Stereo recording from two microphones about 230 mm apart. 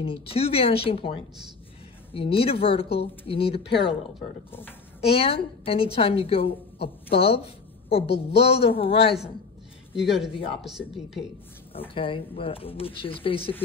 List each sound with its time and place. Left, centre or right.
0.0 s a woman's voice: left
4.5 s a woman's voice: centre
5.1 s a woman's voice: left
9.9 s a woman's voice: centre
11.9 s a woman's voice: left